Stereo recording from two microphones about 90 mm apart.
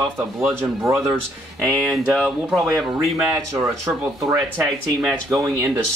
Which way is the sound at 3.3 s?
30° right (ahead or behind).